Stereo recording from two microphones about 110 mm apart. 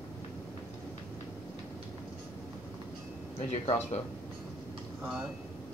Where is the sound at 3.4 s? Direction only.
90° left.